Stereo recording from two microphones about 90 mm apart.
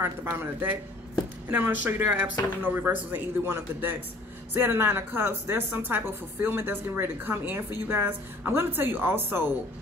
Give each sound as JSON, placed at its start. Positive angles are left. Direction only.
{"t": 0.0, "sound": "a woman's voice", "side_deg": -25}